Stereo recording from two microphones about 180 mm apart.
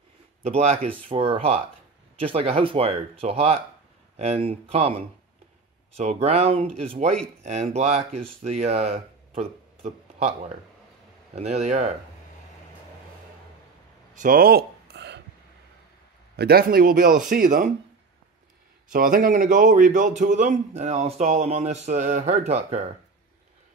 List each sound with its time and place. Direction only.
0.4 s a man's voice: 35° right (ahead or behind)
6.2 s a man's voice: 35° right (ahead or behind)
14.1 s a sound: 50° right (ahead or behind); by 15.2 s 70° right (ahead or behind)
16.3 s a man's voice: 60° right (ahead or behind)
18.9 s a man's voice: 50° right (ahead or behind)